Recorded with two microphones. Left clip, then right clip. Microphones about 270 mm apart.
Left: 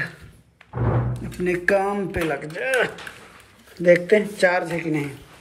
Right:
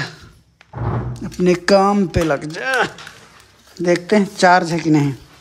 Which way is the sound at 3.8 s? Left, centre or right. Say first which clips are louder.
Even; centre.